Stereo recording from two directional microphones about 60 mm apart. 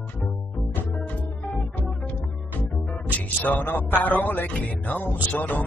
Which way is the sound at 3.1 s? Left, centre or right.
Left.